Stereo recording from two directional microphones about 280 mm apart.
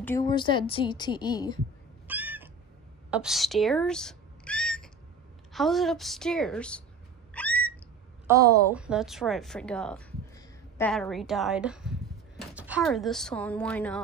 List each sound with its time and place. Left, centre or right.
0.0 s a woman's voice: centre
2.0 s cat: centre
5.5 s a woman's voice: centre
7.3 s a sound: centre
8.3 s a woman's voice: centre